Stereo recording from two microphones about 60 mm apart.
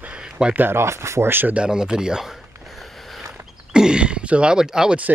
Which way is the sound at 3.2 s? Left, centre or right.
Centre.